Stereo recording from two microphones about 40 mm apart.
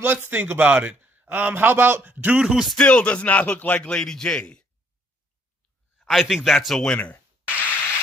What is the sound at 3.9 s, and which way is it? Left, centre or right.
Speech, left.